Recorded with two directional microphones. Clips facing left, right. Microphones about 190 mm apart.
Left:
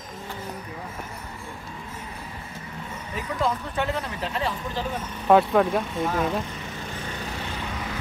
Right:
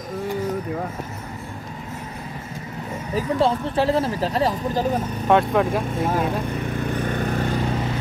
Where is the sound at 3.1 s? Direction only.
30° right (ahead or behind).